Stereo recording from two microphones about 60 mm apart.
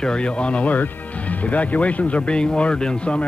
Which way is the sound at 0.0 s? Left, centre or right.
Centre.